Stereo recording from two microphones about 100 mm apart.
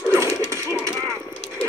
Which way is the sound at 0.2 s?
30° right (ahead or behind).